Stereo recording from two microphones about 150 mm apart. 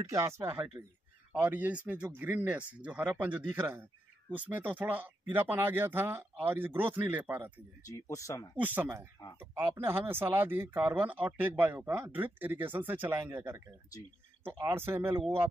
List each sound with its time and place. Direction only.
0.0 s speech: 20° right (ahead or behind)
7.8 s speech: 20° left (ahead or behind)
8.5 s speech: 10° right (ahead or behind)